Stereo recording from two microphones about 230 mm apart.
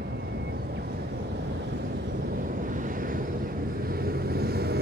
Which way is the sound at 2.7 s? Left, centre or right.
Right.